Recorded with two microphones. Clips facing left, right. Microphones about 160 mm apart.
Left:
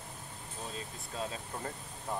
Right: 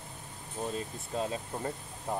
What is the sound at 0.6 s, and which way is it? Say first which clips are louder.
Speech: right 8 dB; 50° right (ahead or behind).